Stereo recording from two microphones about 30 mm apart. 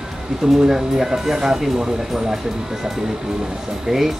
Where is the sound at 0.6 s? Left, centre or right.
Centre.